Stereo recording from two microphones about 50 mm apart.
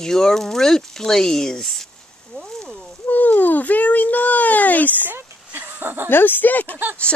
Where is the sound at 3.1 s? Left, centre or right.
Left.